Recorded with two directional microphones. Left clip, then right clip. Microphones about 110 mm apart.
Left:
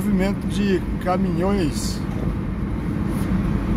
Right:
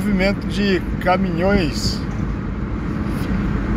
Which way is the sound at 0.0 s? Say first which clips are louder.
Right 4 dB; 25° left (ahead or behind).